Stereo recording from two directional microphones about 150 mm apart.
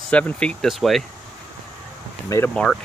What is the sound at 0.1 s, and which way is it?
Speech, 10° left (ahead or behind).